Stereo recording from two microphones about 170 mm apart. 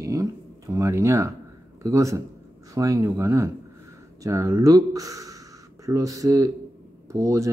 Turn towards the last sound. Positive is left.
turn(degrees=-20)  # may be behind; listen again after turning